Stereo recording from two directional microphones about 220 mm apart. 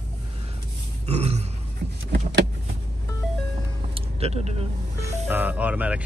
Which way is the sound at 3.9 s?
30° right (ahead or behind).